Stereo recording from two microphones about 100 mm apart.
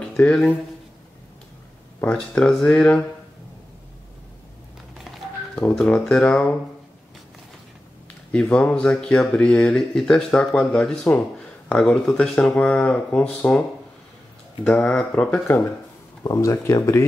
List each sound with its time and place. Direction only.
0.1 s speech: 10° left (ahead or behind)
2.0 s speech: 10° left (ahead or behind)
5.8 s speech: 10° left (ahead or behind)
8.3 s speech: 10° left (ahead or behind)
16.3 s speech: 30° left (ahead or behind)